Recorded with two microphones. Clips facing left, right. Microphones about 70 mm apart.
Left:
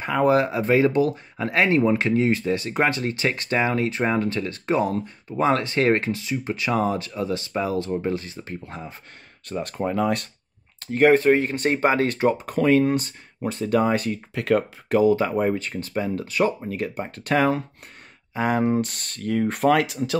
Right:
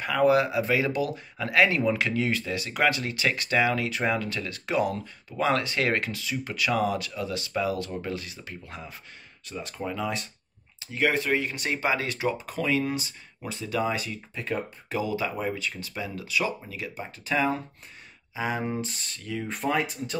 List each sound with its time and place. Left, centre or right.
0.0 s speech: left
9.5 s speech: left
14.3 s speech: left
15.0 s speech: left
18.3 s speech: left